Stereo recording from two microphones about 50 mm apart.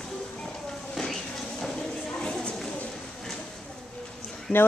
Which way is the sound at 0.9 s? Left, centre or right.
Centre.